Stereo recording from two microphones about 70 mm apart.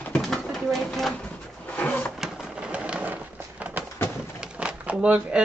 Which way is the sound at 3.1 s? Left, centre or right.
Right.